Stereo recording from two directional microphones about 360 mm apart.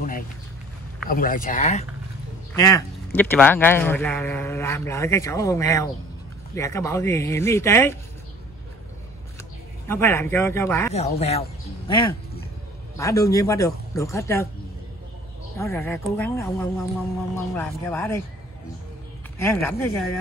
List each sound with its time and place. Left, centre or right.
1.0 s speech: left
2.5 s speech: centre
9.8 s speech: centre
11.0 s speech: centre
15.5 s speech: centre
19.3 s speech: centre